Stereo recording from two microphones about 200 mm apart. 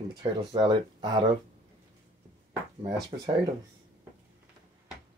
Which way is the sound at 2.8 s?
25° right (ahead or behind).